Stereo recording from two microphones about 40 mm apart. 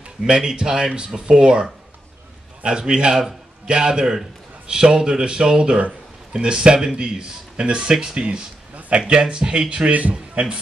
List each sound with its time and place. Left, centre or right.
0.2 s a man's voice: centre
4.0 s a man's voice: centre
8.7 s a sound: right
9.0 s a man's voice: right